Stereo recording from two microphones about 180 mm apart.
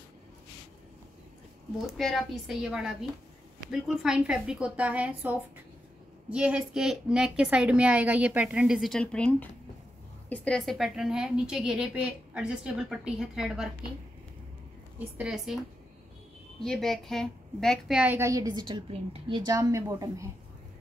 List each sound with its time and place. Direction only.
1.9 s a woman's voice: centre (ahead or behind)
15.0 s a woman's voice: 5° right (ahead or behind)
16.6 s a woman's voice: centre (ahead or behind); by 20.2 s 15° right (ahead or behind)